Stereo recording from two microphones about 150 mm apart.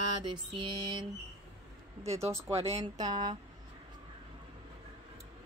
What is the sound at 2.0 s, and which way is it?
Speech, 45° right (ahead or behind).